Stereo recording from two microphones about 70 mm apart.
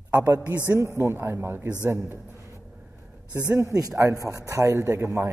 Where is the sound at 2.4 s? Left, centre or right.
Right.